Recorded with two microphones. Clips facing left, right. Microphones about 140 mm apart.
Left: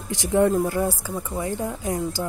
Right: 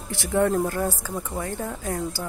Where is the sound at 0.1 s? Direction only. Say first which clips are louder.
Left 2 dB; 15° left (ahead or behind).